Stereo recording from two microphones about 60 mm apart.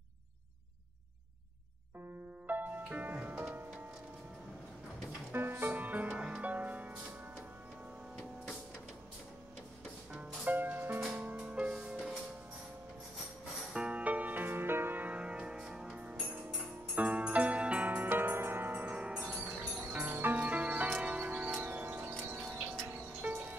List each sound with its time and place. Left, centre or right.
2.4 s music: right
5.3 s music: right
6.0 s music: centre
10.4 s music: right
11.1 s music: right
13.7 s music: right
22.4 s a sound: right
23.2 s music: right